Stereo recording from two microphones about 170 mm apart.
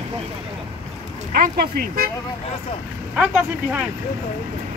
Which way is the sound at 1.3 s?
65° right (ahead or behind).